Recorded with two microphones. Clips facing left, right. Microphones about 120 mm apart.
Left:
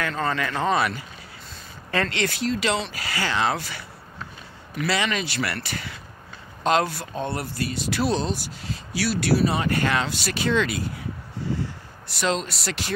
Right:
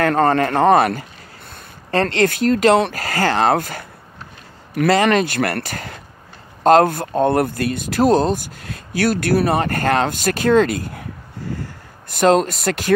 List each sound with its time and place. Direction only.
0.0 s speech: 55° right (ahead or behind)
1.9 s speech: 35° right (ahead or behind)